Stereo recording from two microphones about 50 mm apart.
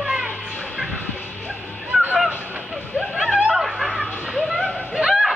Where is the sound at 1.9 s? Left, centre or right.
Right.